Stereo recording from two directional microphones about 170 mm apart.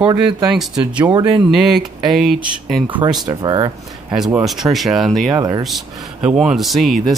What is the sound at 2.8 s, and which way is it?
Speech, 25° right (ahead or behind).